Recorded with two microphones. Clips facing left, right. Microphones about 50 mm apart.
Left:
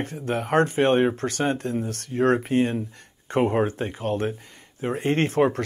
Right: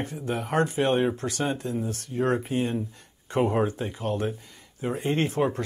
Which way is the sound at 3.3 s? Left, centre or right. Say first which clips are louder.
Left 2 dB; left.